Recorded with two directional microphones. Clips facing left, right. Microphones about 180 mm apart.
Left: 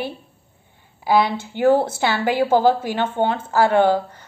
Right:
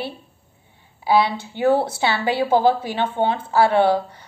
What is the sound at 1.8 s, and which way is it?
A woman's voice, 50° left (ahead or behind).